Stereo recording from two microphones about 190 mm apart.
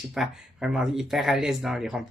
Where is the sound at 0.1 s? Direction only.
Centre (ahead or behind).